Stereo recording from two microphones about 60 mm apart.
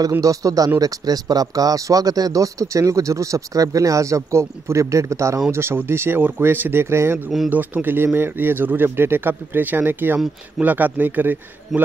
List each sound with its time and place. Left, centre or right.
0.2 s speech: right
0.7 s speech: right
5.5 s speech: right
7.4 s speech: right